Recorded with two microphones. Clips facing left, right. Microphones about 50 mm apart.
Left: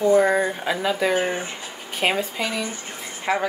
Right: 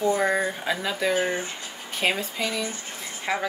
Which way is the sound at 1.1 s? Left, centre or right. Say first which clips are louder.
Left 2 dB; left.